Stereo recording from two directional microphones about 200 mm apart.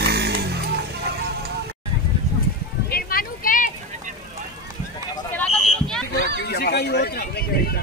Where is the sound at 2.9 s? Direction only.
45° left (ahead or behind).